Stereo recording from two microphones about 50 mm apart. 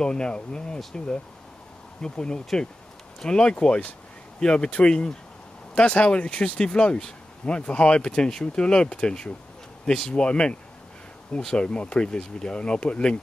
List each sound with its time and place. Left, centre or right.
0.0 s speech: centre